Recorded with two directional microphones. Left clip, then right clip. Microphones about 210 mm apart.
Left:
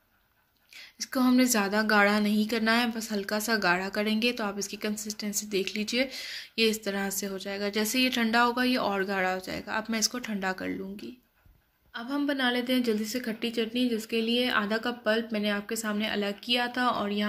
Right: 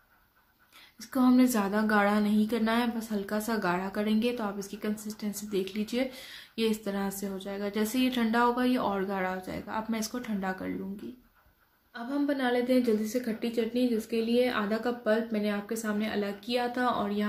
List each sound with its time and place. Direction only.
0.9 s a woman's voice: 15° left (ahead or behind)
11.9 s a woman's voice: 40° left (ahead or behind)